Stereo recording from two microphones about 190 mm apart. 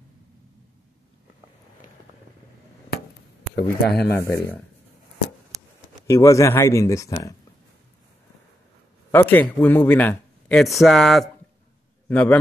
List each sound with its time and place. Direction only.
3.5 s speech: 55° left (ahead or behind)
4.2 s speech: 15° left (ahead or behind)
5.5 s a sound: 15° right (ahead or behind)
6.0 s speech: 15° left (ahead or behind)
9.1 s speech: 10° left (ahead or behind)